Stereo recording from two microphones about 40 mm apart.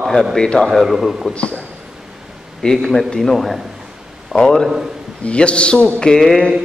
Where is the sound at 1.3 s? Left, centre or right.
Left.